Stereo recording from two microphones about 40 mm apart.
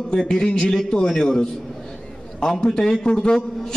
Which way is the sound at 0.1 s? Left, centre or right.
Centre.